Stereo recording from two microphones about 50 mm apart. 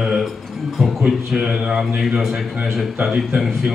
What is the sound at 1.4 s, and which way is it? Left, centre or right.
Mantra, centre.